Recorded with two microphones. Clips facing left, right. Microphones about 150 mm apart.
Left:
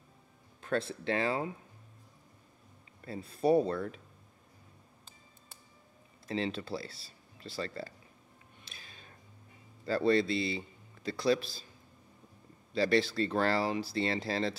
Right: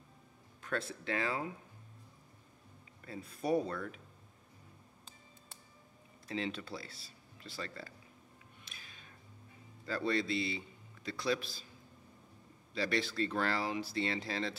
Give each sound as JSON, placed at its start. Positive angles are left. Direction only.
{"t": 0.6, "sound": "speech", "side_deg": 30}
{"t": 3.1, "sound": "speech", "side_deg": 30}
{"t": 6.2, "sound": "speech", "side_deg": 30}
{"t": 8.6, "sound": "a sound", "side_deg": 30}
{"t": 9.8, "sound": "a man's voice", "side_deg": 35}
{"t": 12.7, "sound": "speech", "side_deg": 35}